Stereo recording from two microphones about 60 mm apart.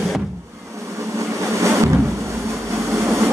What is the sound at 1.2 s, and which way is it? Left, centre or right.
Vehicle, right.